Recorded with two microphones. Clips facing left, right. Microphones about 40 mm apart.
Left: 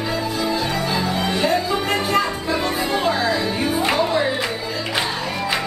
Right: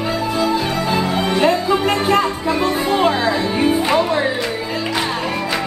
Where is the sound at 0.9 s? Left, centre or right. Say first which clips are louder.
Right 4 dB; right.